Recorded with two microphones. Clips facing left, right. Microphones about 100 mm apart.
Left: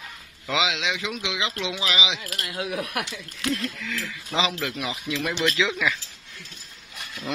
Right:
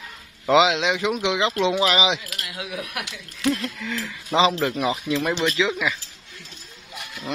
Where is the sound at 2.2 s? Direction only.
40° left (ahead or behind).